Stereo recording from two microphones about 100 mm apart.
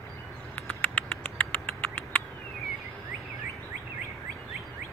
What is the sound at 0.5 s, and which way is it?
Rodents, 15° left (ahead or behind).